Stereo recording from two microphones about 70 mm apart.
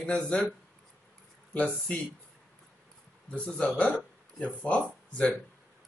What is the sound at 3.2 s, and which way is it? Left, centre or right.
Speech, centre.